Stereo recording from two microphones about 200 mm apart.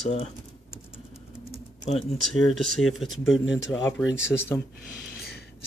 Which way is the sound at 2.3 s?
5° left (ahead or behind).